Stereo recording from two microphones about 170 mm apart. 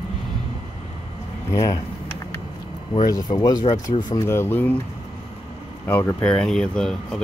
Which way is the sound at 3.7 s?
50° left (ahead or behind).